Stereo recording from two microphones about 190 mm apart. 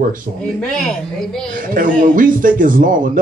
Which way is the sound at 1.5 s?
45° right (ahead or behind).